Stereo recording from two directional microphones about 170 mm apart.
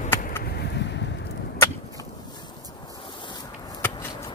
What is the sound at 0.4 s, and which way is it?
Boat, 70° left (ahead or behind).